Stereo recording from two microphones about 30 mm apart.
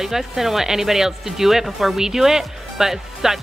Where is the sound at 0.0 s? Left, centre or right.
Centre.